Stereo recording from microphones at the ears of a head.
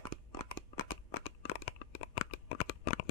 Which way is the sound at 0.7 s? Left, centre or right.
Left.